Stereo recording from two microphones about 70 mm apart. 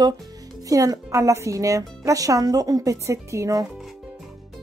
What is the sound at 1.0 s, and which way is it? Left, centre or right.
Speech, right.